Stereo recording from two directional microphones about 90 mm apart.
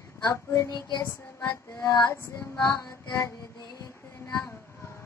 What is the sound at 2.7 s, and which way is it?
Child singing, 45° left (ahead or behind).